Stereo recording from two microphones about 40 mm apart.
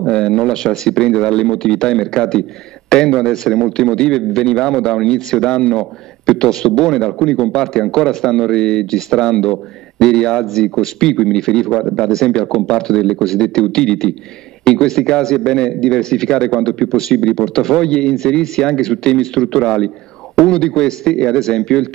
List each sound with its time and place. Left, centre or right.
0.0 s a man's voice: centre